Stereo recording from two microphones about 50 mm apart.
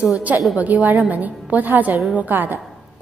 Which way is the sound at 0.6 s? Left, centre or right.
Right.